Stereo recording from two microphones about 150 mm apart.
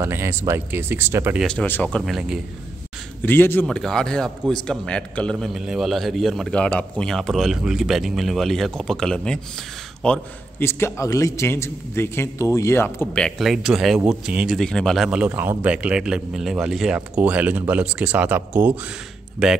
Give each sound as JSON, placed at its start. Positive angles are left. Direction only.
{"t": 0.0, "sound": "speech", "side_deg": -15}
{"t": 1.4, "sound": "a man's voice", "side_deg": 5}
{"t": 3.2, "sound": "a man's voice", "side_deg": 15}